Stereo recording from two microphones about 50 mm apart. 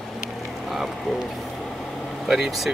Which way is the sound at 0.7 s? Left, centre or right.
Centre.